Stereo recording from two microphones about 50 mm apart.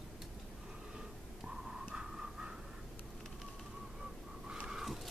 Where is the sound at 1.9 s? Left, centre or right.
Centre.